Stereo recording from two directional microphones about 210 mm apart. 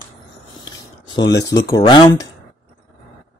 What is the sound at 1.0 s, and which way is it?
Speech, 20° left (ahead or behind).